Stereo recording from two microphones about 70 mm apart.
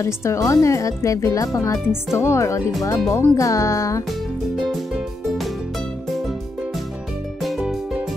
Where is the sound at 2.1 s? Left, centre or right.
Left.